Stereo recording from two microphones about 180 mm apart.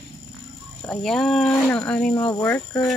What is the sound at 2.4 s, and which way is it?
Speech, 10° left (ahead or behind).